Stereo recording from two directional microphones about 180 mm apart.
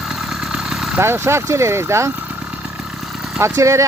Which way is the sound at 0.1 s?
Centre (ahead or behind).